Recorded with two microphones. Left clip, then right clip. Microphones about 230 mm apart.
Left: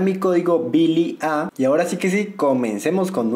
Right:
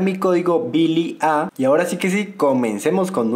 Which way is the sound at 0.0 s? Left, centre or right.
Centre.